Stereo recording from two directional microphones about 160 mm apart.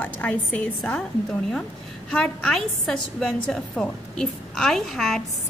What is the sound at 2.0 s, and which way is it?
A woman's voice, 5° left (ahead or behind).